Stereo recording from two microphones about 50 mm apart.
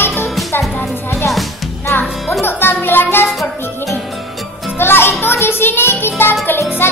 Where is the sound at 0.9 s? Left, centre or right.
Left.